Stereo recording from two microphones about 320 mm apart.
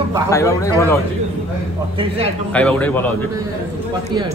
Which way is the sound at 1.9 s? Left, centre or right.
Centre.